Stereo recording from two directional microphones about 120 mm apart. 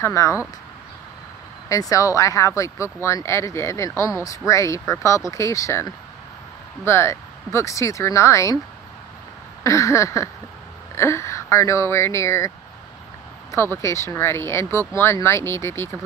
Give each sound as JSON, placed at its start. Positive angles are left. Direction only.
{"t": 0.0, "sound": "speech", "side_deg": 25}
{"t": 1.7, "sound": "speech", "side_deg": 25}
{"t": 9.6, "sound": "speech", "side_deg": 25}